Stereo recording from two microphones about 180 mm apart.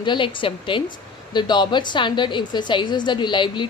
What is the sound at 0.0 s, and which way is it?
A woman's voice, 25° left (ahead or behind).